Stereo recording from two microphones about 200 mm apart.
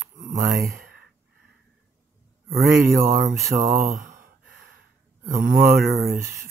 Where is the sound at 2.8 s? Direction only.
45° right (ahead or behind).